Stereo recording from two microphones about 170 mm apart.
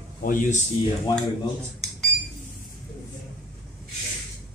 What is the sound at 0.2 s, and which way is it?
Speech, 50° left (ahead or behind).